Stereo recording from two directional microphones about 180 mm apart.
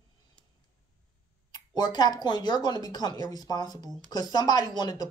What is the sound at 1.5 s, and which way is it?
Speech, 20° left (ahead or behind).